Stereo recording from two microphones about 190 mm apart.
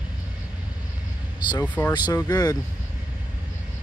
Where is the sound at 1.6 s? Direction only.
10° left (ahead or behind).